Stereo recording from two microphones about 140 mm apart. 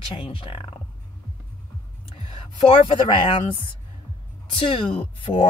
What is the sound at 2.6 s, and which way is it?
Speech, 35° left (ahead or behind).